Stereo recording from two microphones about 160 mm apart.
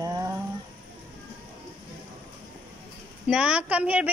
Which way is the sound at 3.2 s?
5° right (ahead or behind).